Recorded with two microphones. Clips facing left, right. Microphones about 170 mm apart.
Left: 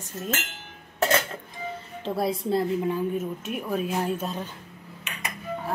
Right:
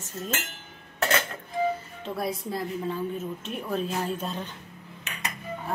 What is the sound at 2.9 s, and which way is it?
Speech, 10° left (ahead or behind).